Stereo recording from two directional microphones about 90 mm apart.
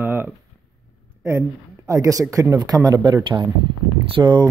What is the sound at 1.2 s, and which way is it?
A woman's voice, 30° right (ahead or behind).